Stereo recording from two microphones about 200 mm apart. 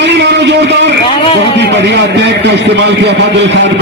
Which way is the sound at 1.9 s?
60° right (ahead or behind).